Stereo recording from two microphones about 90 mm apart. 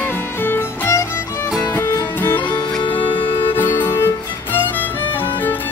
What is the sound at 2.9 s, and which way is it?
Music, 70° left (ahead or behind).